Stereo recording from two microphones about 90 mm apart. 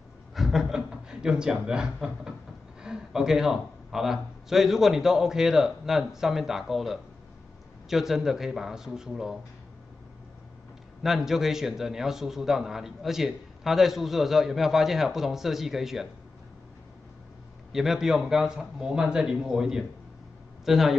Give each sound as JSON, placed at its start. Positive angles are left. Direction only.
{"t": 0.3, "sound": "chuckle", "side_deg": -5}
{"t": 2.8, "sound": "a man's voice", "side_deg": -5}
{"t": 11.0, "sound": "a man's voice", "side_deg": -5}
{"t": 17.7, "sound": "a man's voice", "side_deg": -5}